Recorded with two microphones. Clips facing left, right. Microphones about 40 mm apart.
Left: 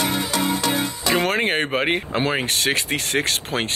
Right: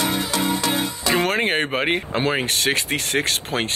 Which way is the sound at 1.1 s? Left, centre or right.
Centre.